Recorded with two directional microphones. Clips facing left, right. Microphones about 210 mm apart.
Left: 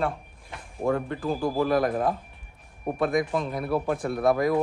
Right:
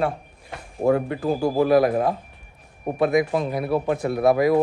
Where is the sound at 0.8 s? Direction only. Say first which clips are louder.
Right 6 dB; 35° right (ahead or behind).